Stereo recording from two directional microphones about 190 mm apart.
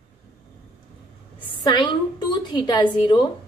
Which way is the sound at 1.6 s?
25° left (ahead or behind).